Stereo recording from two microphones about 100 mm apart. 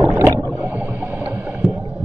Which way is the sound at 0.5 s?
20° right (ahead or behind).